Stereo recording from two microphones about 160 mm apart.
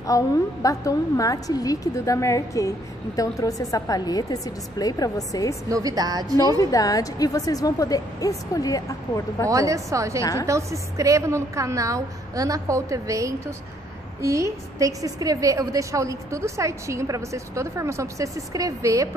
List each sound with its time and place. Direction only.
0.0 s a woman's voice: 20° left (ahead or behind)
5.7 s a woman's voice: 20° right (ahead or behind)
6.6 s a woman's voice: 20° left (ahead or behind)
9.5 s a woman's voice: 20° right (ahead or behind)